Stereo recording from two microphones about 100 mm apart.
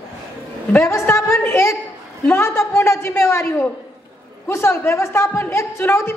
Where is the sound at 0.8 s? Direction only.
30° left (ahead or behind).